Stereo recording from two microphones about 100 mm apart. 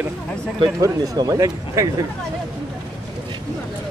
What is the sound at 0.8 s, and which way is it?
Speech, 35° right (ahead or behind).